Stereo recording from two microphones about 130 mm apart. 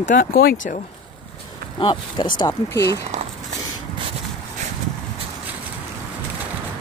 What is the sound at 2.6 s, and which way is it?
Speech, 25° left (ahead or behind).